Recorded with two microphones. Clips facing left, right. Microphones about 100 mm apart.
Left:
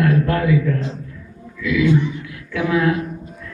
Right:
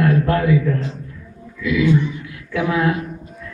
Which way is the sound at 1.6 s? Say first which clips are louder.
Even; 25° right (ahead or behind).